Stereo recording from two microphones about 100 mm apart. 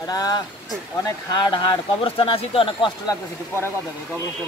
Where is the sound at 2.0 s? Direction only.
65° left (ahead or behind).